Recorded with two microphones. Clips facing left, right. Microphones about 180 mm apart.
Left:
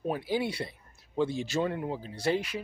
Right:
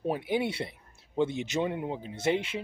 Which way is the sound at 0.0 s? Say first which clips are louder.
Right 1 dB; 25° right (ahead or behind).